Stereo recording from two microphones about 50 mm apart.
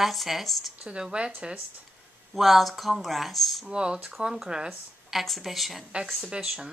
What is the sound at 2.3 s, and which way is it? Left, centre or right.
Speech, centre.